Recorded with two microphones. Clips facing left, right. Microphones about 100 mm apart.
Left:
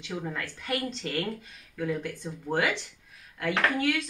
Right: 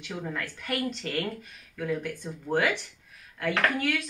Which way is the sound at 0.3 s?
20° left (ahead or behind).